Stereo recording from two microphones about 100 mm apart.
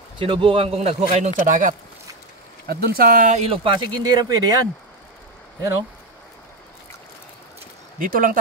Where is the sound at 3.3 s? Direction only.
80° right.